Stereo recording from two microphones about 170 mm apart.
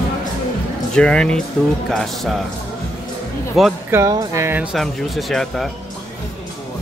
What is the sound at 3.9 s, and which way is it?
Speech, 15° right (ahead or behind).